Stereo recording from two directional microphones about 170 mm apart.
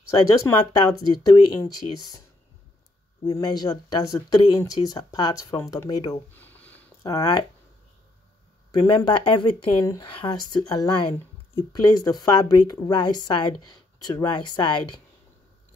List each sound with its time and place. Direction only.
0.5 s speech: 20° left (ahead or behind)
3.3 s speech: 25° left (ahead or behind)
6.3 s a sound: 10° left (ahead or behind)
7.0 s speech: 20° left (ahead or behind)
8.7 s speech: 25° left (ahead or behind)